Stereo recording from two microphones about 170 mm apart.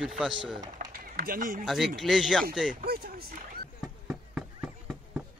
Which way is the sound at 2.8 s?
60° right (ahead or behind).